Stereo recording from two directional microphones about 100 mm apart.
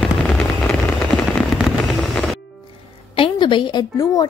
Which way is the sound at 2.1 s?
5° left (ahead or behind).